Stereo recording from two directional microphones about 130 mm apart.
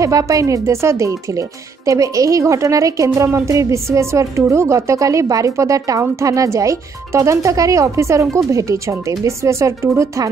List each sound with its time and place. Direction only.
0.0 s a woman's voice: 25° right (ahead or behind)